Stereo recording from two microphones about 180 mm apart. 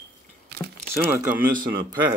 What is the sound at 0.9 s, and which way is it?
Speech, 10° right (ahead or behind).